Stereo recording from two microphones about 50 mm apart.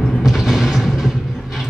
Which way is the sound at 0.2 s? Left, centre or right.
Centre.